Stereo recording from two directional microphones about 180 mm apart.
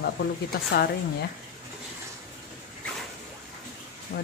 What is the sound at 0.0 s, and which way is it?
Speech, 65° left (ahead or behind).